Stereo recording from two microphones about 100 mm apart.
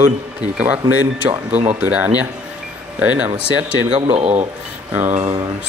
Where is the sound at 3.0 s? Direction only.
15° right (ahead or behind).